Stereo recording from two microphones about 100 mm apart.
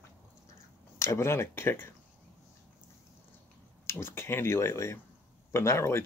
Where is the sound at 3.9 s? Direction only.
25° left (ahead or behind).